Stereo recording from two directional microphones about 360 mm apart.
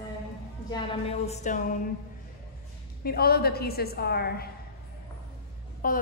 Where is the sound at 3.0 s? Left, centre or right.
Left.